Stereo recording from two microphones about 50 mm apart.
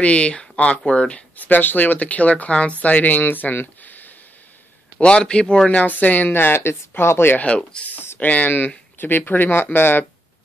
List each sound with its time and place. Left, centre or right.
0.0 s speech: left
1.3 s speech: left
5.0 s speech: centre
5.7 s speech: left
7.3 s speech: left
8.2 s speech: left